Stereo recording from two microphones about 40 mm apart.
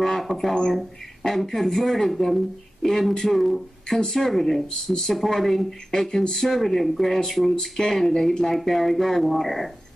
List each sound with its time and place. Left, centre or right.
0.0 s speech: centre